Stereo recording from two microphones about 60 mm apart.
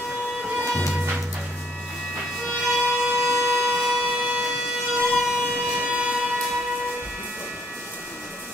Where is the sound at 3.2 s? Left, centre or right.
Right.